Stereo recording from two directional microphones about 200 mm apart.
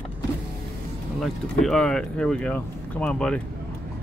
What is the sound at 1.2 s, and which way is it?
Speech, centre (ahead or behind).